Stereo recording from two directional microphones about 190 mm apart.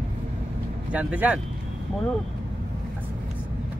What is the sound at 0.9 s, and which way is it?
Speech, 5° right (ahead or behind).